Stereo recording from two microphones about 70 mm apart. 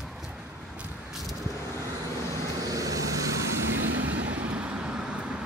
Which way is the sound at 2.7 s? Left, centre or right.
Right.